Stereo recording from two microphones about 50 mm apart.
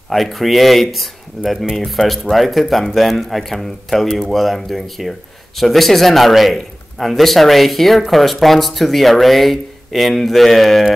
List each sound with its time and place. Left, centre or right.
0.1 s a man's voice: centre